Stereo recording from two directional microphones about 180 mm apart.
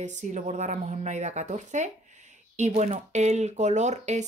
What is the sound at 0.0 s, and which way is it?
Speech, 40° right (ahead or behind).